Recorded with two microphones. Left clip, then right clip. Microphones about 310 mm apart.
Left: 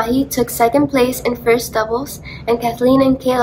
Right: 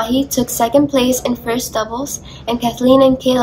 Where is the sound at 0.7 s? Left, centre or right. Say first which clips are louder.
Right 4 dB; centre.